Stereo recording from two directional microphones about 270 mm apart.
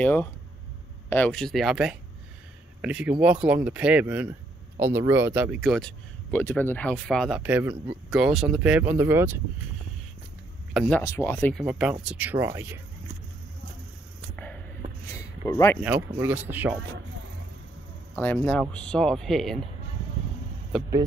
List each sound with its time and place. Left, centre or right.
0.0 s speech: centre
7.7 s speech: centre
8.1 s speech: centre
10.7 s speech: centre
14.3 s a sound: centre
15.8 s speech: centre
18.1 s speech: centre
20.7 s speech: centre